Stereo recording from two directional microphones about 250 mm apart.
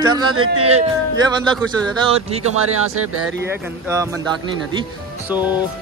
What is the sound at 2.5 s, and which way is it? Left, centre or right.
Speech, right.